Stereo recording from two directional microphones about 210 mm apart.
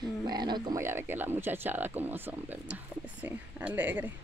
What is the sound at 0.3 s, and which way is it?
Speech, 20° right (ahead or behind).